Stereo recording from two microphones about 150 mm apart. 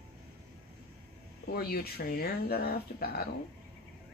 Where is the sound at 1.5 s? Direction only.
90° left.